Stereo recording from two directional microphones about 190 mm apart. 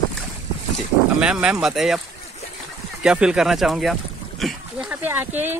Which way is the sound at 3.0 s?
5° right (ahead or behind).